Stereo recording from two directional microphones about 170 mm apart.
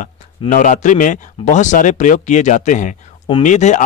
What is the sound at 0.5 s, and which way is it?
Speech, 50° left (ahead or behind).